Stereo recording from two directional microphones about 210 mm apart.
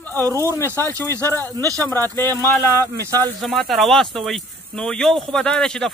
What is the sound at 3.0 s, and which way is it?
Speech, 15° right (ahead or behind).